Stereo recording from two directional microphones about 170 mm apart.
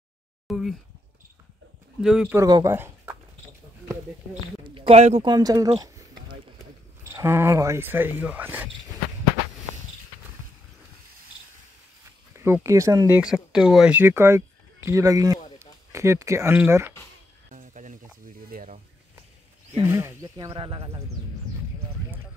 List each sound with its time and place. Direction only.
0.5 s a sound: centre (ahead or behind)
2.0 s speech: 5° right (ahead or behind)
2.3 s speech: 20° right (ahead or behind)
4.6 s a sound: 30° right (ahead or behind)
5.2 s speech: 25° right (ahead or behind)
12.6 s speech: 15° right (ahead or behind)
13.2 s speech: 5° right (ahead or behind)
17.5 s music: 50° right (ahead or behind)
19.7 s speech: 15° right (ahead or behind)
20.3 s speech: 30° right (ahead or behind)